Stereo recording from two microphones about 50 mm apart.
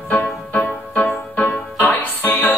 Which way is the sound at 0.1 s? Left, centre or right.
Left.